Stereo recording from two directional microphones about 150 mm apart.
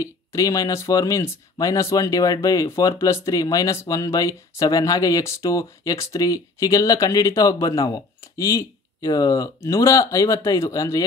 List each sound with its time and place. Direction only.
0.0 s speech: 20° left (ahead or behind)